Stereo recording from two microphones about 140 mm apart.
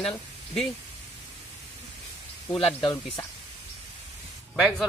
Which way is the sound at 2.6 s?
35° left (ahead or behind).